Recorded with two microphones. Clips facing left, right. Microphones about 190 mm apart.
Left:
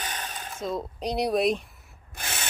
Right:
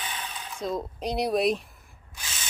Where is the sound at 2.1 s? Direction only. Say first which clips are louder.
Left 7 dB; 60° left (ahead or behind).